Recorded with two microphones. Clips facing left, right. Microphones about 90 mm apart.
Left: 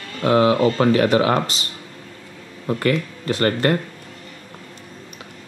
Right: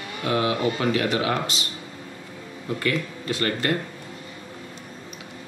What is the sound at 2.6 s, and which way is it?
Speech, 45° left (ahead or behind).